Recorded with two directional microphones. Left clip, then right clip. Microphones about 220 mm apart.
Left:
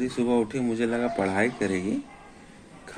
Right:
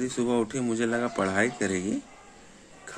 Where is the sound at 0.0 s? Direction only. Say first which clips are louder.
Left 2 dB; 45° right (ahead or behind).